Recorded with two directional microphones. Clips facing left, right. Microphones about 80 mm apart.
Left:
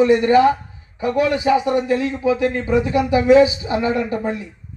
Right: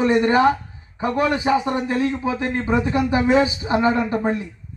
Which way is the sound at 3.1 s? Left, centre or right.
Right.